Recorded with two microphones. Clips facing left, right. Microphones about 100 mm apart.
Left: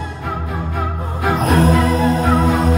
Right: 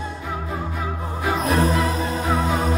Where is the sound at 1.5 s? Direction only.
80° left; by 2.6 s 65° left (ahead or behind).